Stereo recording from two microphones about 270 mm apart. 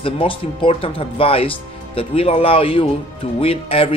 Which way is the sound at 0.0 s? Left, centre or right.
Centre.